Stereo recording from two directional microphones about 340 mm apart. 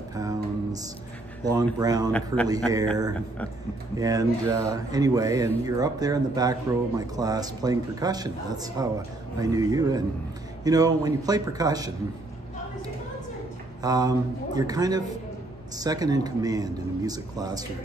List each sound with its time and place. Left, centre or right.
0.1 s music: centre
1.4 s speech: centre
2.0 s a man's voice: centre
2.7 s speech: centre
13.8 s speech: centre